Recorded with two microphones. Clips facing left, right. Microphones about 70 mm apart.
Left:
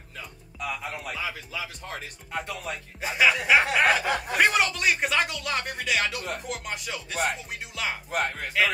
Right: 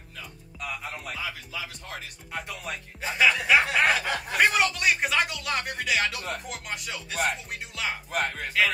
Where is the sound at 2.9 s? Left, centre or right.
Centre.